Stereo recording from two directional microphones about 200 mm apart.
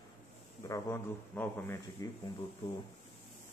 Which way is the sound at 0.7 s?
10° left (ahead or behind).